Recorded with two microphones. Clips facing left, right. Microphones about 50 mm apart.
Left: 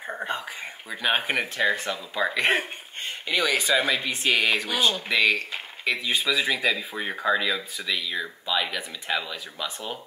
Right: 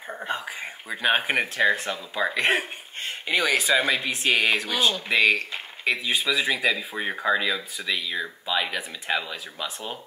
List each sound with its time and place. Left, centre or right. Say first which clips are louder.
0.0 s a sound: left 3 dB; centre
1.0 s speech: right 2 dB; centre
3.3 s speech: right 1 dB; centre
3.8 s speech: right 1 dB; centre